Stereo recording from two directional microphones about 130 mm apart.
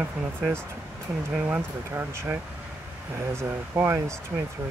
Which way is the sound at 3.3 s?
20° right (ahead or behind).